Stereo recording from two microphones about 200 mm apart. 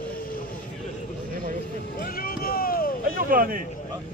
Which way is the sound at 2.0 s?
45° left (ahead or behind).